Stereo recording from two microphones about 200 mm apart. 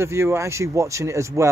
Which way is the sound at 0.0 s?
15° right (ahead or behind).